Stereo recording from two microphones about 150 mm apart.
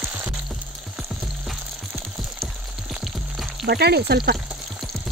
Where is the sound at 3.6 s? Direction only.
90° right.